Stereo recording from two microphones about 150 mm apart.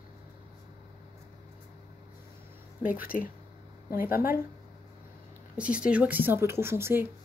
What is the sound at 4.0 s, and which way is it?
Speech, 80° left.